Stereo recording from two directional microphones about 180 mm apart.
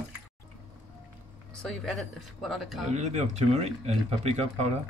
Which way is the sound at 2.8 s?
40° right (ahead or behind).